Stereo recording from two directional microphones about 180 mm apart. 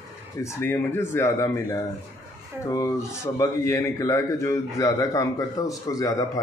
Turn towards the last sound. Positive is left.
turn(degrees=20)  # may be behind; listen again after turning